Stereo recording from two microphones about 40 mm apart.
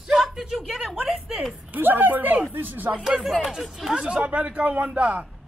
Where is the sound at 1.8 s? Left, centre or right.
Right.